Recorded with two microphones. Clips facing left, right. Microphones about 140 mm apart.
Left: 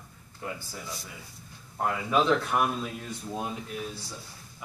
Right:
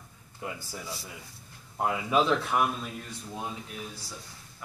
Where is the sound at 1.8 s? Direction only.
10° right (ahead or behind).